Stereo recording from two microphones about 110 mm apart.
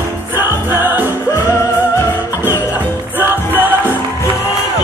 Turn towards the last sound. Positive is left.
turn(degrees=-15)  # may be behind; listen again after turning